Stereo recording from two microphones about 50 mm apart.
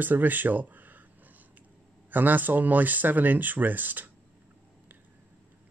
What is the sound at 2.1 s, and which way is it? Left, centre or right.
Speech, right.